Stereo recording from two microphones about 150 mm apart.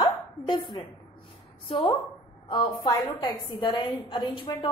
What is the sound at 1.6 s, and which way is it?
A woman's voice, 30° left (ahead or behind).